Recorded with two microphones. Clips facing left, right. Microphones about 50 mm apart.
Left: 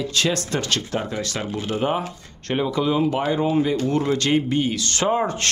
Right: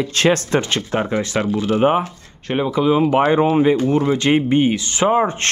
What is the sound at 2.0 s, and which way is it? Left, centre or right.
Speech, centre.